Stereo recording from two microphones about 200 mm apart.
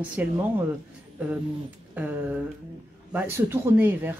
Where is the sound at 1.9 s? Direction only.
10° right (ahead or behind).